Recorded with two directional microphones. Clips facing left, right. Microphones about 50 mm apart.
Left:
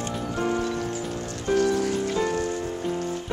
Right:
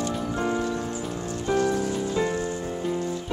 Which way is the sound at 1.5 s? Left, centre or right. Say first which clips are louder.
Left 2 dB; left.